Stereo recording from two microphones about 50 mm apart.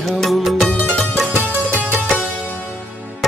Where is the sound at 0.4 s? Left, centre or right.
Centre.